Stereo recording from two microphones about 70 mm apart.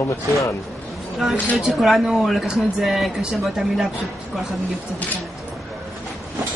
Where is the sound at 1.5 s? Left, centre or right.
Centre.